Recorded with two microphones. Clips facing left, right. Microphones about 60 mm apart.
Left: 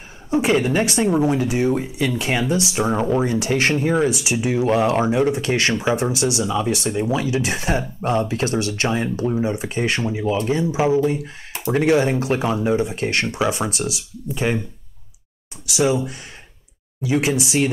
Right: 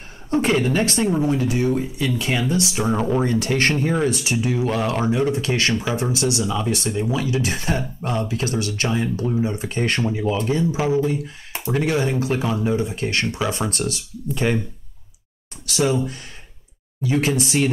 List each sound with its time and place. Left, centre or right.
0.3 s speech: centre
15.6 s speech: centre